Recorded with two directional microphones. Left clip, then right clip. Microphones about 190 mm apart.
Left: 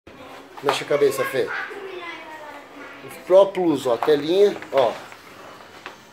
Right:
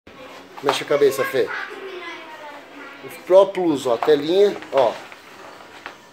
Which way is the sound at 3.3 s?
5° right (ahead or behind).